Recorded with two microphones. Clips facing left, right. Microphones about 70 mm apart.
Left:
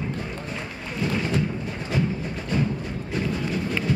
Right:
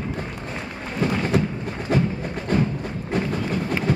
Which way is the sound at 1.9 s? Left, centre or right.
Right.